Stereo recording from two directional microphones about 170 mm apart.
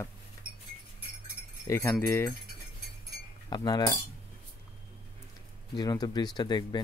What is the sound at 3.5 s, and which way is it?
Speech, 25° left (ahead or behind).